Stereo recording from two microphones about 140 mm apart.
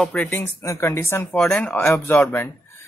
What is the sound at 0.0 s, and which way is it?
Speech, 10° left (ahead or behind).